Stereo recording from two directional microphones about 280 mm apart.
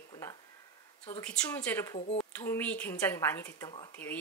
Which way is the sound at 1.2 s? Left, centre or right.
Centre.